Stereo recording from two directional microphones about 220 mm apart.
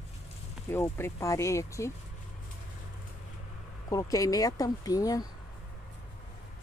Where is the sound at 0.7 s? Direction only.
10° left (ahead or behind).